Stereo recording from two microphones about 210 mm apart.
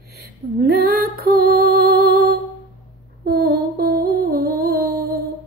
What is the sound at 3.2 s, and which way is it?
Music, 45° right (ahead or behind).